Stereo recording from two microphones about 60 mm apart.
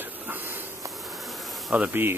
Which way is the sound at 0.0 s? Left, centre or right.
Right.